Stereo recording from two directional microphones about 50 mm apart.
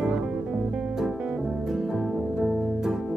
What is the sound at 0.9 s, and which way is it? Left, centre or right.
Music, centre.